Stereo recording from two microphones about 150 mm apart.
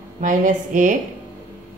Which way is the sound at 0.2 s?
60° right (ahead or behind).